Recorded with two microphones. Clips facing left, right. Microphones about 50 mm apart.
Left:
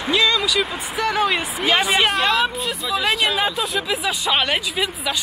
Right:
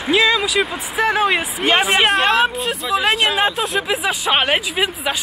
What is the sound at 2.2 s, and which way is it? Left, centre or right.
Speech, right.